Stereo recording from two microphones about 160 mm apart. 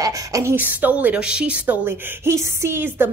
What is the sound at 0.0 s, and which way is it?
A woman's voice, 20° right (ahead or behind).